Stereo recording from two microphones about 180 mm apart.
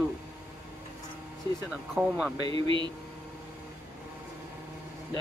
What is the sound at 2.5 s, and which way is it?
Speech, 30° right (ahead or behind).